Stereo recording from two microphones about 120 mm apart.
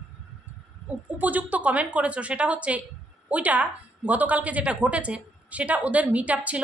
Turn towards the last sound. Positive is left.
turn(degrees=-10)  # may be behind; listen again after turning